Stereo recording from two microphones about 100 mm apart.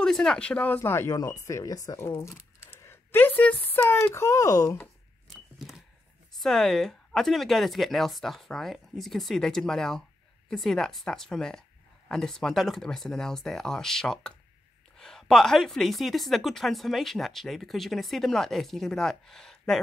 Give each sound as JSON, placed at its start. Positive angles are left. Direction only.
{"t": 0.0, "sound": "speech", "side_deg": 5}
{"t": 6.4, "sound": "a woman's voice", "side_deg": 5}